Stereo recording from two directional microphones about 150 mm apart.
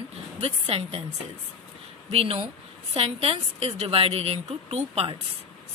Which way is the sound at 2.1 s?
40° right (ahead or behind).